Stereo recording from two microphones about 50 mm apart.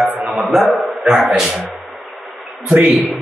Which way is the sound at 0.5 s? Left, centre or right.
Centre.